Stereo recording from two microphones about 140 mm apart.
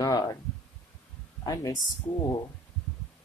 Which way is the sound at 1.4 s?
25° left (ahead or behind).